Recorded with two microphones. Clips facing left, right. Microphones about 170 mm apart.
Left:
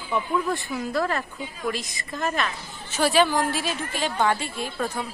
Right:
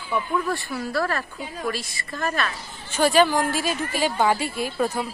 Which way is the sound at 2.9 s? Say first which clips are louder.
Right 2 dB; centre (ahead or behind).